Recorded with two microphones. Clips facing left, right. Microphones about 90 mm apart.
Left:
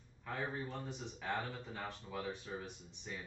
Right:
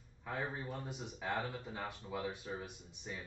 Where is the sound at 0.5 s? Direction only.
10° right (ahead or behind).